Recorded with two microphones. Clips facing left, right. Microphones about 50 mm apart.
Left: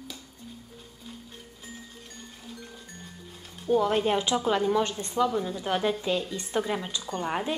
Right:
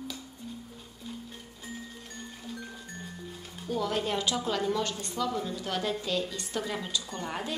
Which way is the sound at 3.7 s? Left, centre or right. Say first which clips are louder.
Left 7 dB; left.